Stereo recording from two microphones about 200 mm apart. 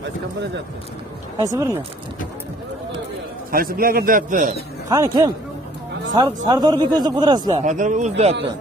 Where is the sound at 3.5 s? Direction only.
45° right (ahead or behind).